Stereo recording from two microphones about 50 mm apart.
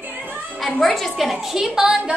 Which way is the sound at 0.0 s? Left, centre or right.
Right.